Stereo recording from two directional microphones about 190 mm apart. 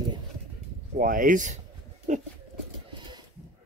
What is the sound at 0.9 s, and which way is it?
Speech, 45° right (ahead or behind).